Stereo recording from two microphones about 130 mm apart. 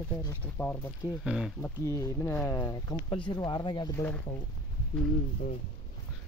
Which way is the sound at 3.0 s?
40° left (ahead or behind).